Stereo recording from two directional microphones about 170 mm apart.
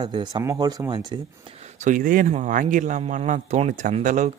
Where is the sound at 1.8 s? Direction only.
50° right (ahead or behind).